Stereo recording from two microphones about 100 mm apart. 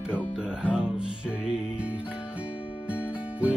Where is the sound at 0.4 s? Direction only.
10° right (ahead or behind).